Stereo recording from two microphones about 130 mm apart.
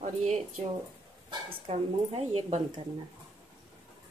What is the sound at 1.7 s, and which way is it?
Speech, 50° right (ahead or behind).